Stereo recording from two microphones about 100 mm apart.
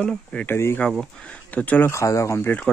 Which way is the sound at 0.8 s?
5° left (ahead or behind).